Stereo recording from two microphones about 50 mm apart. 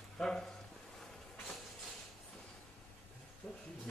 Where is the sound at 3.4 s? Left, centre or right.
Centre.